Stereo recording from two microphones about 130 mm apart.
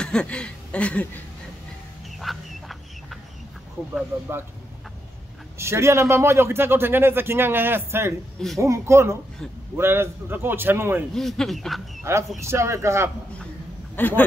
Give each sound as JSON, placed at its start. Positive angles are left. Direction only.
{"t": 0.0, "sound": "speech", "side_deg": 5}
{"t": 2.1, "sound": "duck", "side_deg": 0}
{"t": 5.6, "sound": "a man's voice", "side_deg": -20}
{"t": 11.1, "sound": "speech", "side_deg": 0}
{"t": 12.0, "sound": "a man's voice", "side_deg": -20}
{"t": 13.9, "sound": "speech", "side_deg": 15}